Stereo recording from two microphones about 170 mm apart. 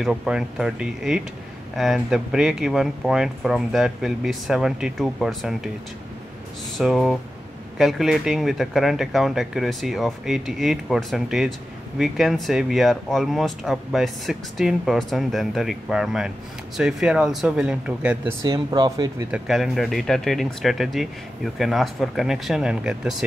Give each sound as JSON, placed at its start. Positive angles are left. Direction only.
{"t": 0.0, "sound": "speech", "side_deg": 0}
{"t": 6.8, "sound": "speech", "side_deg": 0}
{"t": 18.4, "sound": "speech", "side_deg": -25}
{"t": 19.3, "sound": "speech", "side_deg": 0}